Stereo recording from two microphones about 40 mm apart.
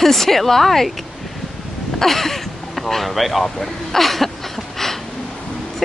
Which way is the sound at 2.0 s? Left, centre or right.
Centre.